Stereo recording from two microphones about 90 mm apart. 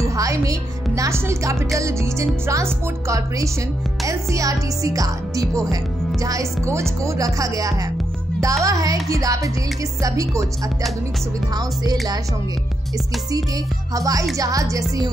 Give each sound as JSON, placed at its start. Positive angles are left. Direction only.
{"t": 0.0, "sound": "music", "side_deg": -35}
{"t": 0.9, "sound": "speech", "side_deg": -35}
{"t": 11.5, "sound": "speech", "side_deg": -45}
{"t": 13.9, "sound": "speech", "side_deg": -40}